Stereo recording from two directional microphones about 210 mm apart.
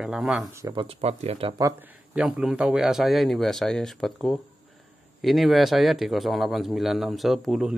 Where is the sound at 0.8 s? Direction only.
30° right (ahead or behind).